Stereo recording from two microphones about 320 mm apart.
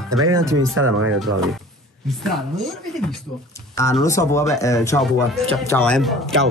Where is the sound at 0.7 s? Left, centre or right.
Right.